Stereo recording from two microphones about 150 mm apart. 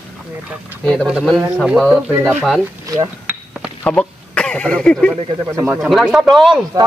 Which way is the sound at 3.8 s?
5° left (ahead or behind).